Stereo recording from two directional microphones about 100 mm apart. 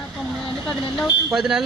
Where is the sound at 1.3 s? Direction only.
Centre (ahead or behind).